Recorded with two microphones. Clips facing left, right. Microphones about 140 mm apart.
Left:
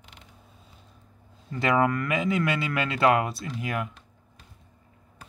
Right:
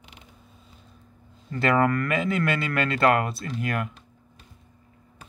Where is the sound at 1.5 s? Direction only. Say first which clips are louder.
Right 1 dB; 10° left (ahead or behind).